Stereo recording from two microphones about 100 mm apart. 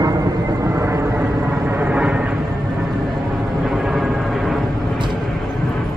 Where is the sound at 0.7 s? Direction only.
25° right (ahead or behind).